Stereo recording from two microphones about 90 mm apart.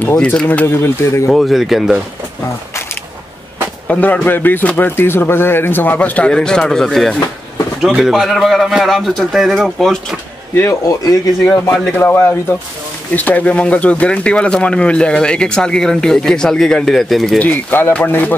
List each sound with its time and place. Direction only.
0.0 s speech: 15° left (ahead or behind)
0.5 s a man's voice: 25° left (ahead or behind)
1.3 s a man's voice: centre (ahead or behind)
3.8 s a man's voice: 15° left (ahead or behind)
10.5 s speech: 30° left (ahead or behind)
12.0 s a man's voice: 25° left (ahead or behind); by 17.4 s centre (ahead or behind)
17.4 s a man's voice: 20° left (ahead or behind)